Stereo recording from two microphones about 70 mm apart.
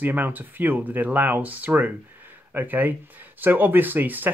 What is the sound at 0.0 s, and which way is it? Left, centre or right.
Speech, right.